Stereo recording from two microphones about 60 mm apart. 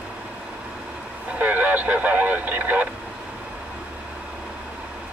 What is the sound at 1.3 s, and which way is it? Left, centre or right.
Vehicle, right.